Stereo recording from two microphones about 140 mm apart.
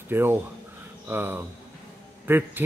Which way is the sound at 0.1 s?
15° right (ahead or behind).